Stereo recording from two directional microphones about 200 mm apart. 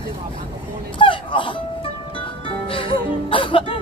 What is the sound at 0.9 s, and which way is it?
Music, 25° left (ahead or behind).